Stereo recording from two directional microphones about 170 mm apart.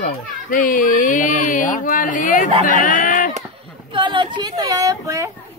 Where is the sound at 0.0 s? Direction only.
55° left (ahead or behind).